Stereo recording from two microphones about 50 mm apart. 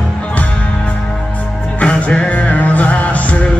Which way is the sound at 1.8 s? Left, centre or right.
Left.